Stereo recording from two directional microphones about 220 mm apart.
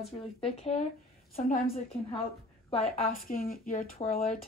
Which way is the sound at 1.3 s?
35° left (ahead or behind).